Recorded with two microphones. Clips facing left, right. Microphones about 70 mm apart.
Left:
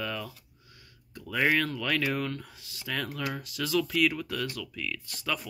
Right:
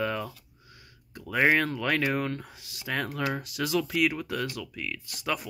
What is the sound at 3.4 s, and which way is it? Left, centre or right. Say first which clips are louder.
Speech: right 1 dB; right.